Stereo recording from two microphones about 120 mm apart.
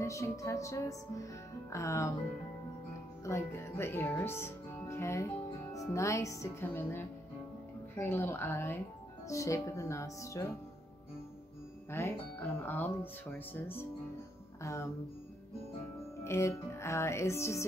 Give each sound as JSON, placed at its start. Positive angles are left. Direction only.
{"t": 0.0, "sound": "music", "side_deg": 25}
{"t": 3.3, "sound": "speech", "side_deg": 20}
{"t": 7.9, "sound": "music", "side_deg": 20}
{"t": 11.9, "sound": "speech", "side_deg": 20}
{"t": 14.6, "sound": "music", "side_deg": 25}
{"t": 16.3, "sound": "music", "side_deg": 25}